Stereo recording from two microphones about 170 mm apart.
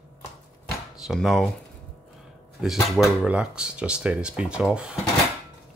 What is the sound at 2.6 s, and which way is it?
Speech, centre (ahead or behind).